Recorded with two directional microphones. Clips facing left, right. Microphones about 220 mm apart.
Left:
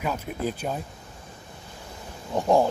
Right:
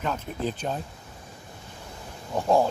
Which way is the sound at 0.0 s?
10° left (ahead or behind).